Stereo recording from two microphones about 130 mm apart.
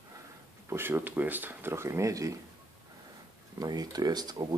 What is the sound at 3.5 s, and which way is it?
Speech, 30° right (ahead or behind).